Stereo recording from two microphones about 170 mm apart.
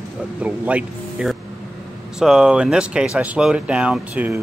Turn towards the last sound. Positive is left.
turn(degrees=-10)  # may be behind; listen again after turning